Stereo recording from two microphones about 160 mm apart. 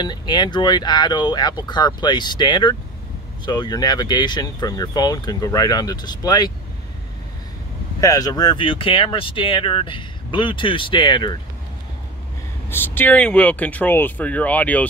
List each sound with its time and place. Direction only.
0.0 s speech: 25° left (ahead or behind)
8.0 s speech: 25° left (ahead or behind)
12.6 s speech: 15° left (ahead or behind)